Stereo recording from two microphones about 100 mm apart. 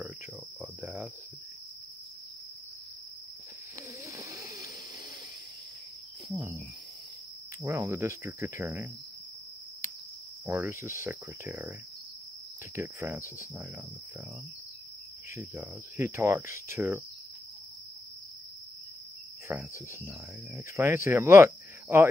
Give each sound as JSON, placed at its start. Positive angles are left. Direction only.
{"t": 0.6, "sound": "cricket", "side_deg": -15}
{"t": 4.0, "sound": "hiss", "side_deg": -30}
{"t": 7.6, "sound": "cricket", "side_deg": -20}
{"t": 10.4, "sound": "cricket", "side_deg": -25}
{"t": 12.7, "sound": "cricket", "side_deg": -25}
{"t": 15.3, "sound": "cricket", "side_deg": -25}
{"t": 19.5, "sound": "speech", "side_deg": -15}
{"t": 20.5, "sound": "cricket", "side_deg": -25}